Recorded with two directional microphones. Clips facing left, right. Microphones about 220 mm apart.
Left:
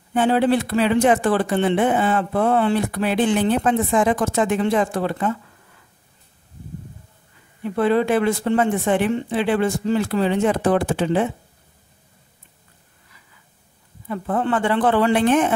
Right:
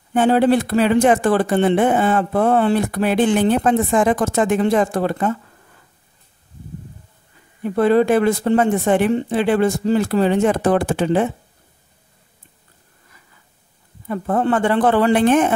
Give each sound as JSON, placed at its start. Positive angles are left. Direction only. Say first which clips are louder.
{"t": 0.1, "sound": "speech", "louder": "right 3 dB", "side_deg": -45}
{"t": 7.6, "sound": "speech", "louder": "right 4 dB", "side_deg": -40}
{"t": 14.0, "sound": "speech", "louder": "right 3 dB", "side_deg": -45}